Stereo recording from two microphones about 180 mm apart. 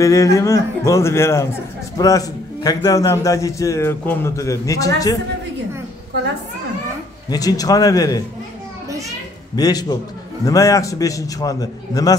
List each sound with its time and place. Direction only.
0.0 s a man's voice: 15° left (ahead or behind)
7.2 s a man's voice: 20° left (ahead or behind)
9.6 s a man's voice: 20° left (ahead or behind)